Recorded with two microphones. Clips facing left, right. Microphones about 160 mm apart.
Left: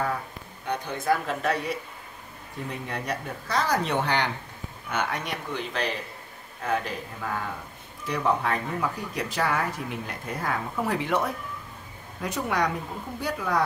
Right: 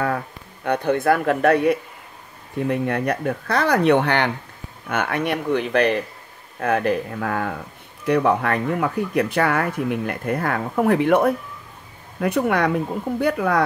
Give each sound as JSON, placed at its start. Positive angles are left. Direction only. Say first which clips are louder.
{"t": 0.7, "sound": "speech", "louder": "right 8 dB", "side_deg": -60}